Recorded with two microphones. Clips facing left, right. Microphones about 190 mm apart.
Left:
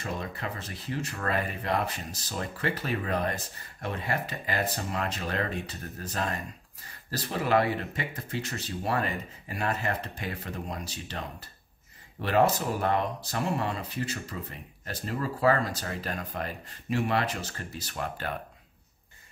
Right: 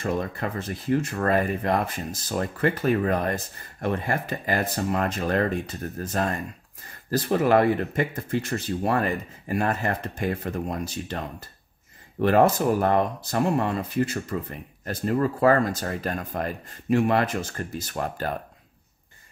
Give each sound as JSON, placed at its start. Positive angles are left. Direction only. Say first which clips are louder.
{"t": 0.0, "sound": "speech", "louder": "right 8 dB", "side_deg": -50}